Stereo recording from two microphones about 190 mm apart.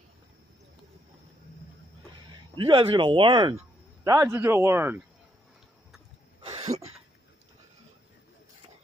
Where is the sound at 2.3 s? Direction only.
25° right (ahead or behind).